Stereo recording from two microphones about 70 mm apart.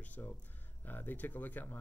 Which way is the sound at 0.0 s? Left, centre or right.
Left.